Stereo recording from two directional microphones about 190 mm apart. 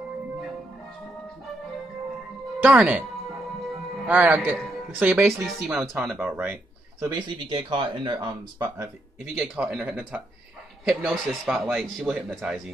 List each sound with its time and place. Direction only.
2.6 s speech: 10° right (ahead or behind)
4.0 s a man's voice: 10° right (ahead or behind)
7.2 s speech: 25° right (ahead or behind)
9.4 s a man's voice: 5° right (ahead or behind)